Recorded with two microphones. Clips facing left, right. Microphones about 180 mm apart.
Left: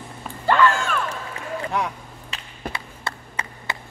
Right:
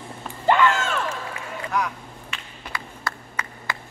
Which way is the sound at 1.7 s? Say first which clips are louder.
Right 4 dB; 25° left (ahead or behind).